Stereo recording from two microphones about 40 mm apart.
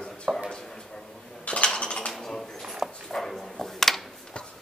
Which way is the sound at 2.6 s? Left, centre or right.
Centre.